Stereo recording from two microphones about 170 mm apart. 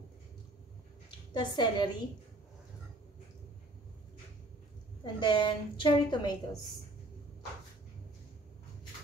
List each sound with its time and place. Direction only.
1.3 s a woman's voice: 25° left (ahead or behind)
5.0 s a woman's voice: 25° left (ahead or behind)